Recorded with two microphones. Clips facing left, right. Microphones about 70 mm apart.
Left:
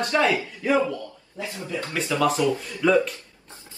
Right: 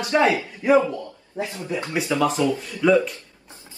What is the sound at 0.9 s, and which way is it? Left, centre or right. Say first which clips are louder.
Speech: right 1 dB; right.